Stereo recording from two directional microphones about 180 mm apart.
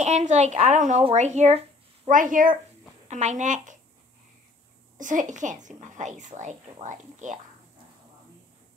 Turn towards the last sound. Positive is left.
turn(degrees=-45)  # may be behind; listen again after turning